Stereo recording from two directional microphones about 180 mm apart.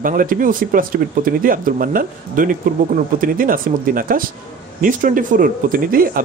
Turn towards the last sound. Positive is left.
turn(degrees=-50)  # may be behind; listen again after turning